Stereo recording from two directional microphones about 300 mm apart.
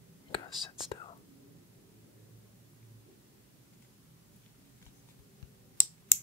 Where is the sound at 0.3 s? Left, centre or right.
Centre.